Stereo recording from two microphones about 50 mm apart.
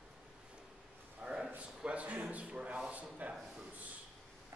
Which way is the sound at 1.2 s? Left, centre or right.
Centre.